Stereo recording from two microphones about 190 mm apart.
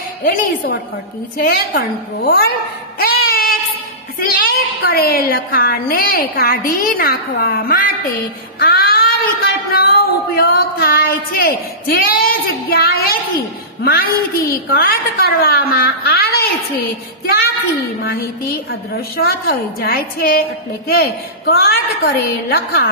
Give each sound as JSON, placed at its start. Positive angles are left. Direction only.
{"t": 0.2, "sound": "a woman's voice", "side_deg": 50}
{"t": 3.0, "sound": "child singing", "side_deg": 50}
{"t": 4.2, "sound": "a child's voice", "side_deg": 50}
{"t": 10.3, "sound": "a sound", "side_deg": 55}
{"t": 12.0, "sound": "a woman's voice", "side_deg": 50}
{"t": 18.7, "sound": "a woman's voice", "side_deg": 55}